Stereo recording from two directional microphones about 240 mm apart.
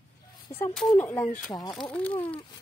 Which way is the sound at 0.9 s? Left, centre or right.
Centre.